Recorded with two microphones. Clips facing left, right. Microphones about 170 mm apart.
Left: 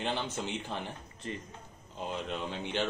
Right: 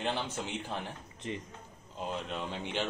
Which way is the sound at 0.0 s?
Centre (ahead or behind).